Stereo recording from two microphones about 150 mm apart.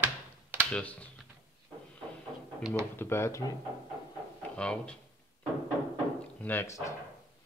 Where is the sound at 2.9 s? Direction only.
15° left (ahead or behind).